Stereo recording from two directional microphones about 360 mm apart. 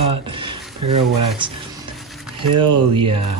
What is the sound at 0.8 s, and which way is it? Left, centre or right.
Speech, right.